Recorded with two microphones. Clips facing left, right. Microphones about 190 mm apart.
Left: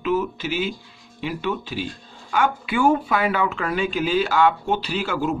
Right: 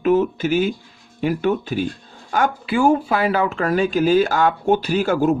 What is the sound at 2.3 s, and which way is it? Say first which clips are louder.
Speech: right 2 dB; 35° right (ahead or behind).